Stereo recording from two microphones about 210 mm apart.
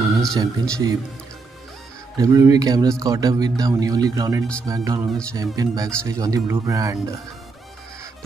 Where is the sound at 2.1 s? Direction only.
15° right (ahead or behind).